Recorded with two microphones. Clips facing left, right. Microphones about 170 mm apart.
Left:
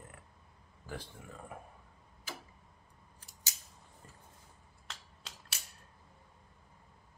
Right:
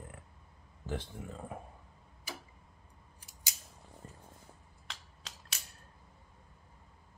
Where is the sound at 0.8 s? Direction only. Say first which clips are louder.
Right 6 dB; 20° right (ahead or behind).